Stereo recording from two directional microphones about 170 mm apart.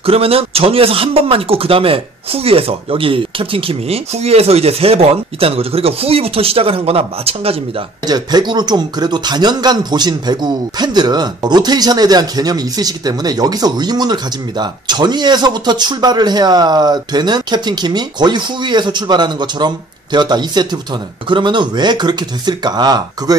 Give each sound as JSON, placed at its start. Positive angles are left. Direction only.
{"t": 0.0, "sound": "speech", "side_deg": -35}
{"t": 8.1, "sound": "speech", "side_deg": -25}